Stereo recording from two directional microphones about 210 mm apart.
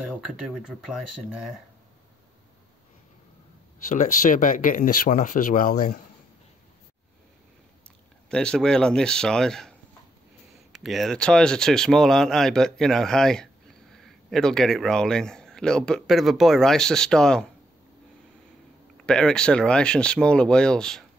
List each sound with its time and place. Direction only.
0.0 s speech: 5° right (ahead or behind)
3.9 s speech: 35° left (ahead or behind)
8.3 s speech: 5° left (ahead or behind)
19.0 s speech: 5° left (ahead or behind)